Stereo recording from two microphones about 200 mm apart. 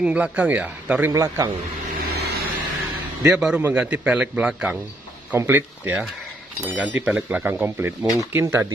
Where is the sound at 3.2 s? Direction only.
5° right (ahead or behind).